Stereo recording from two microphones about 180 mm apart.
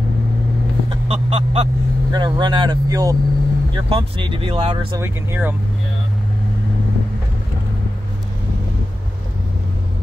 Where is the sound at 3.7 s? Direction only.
30° right (ahead or behind).